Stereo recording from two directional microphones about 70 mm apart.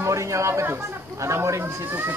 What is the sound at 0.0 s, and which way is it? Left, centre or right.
Speech, right.